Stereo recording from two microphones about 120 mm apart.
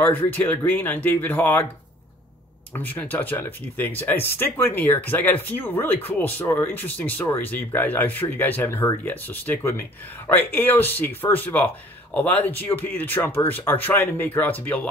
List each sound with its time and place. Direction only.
0.0 s speech: 15° left (ahead or behind)
2.7 s speech: 15° left (ahead or behind)